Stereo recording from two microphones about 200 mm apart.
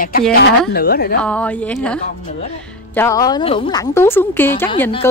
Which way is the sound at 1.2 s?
5° left (ahead or behind).